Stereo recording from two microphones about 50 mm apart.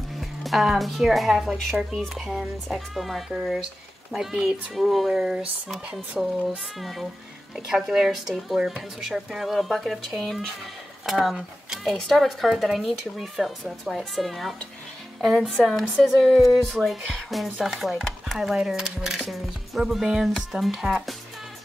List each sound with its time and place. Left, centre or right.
0.2 s speech: centre
5.1 s speech: centre
9.0 s speech: centre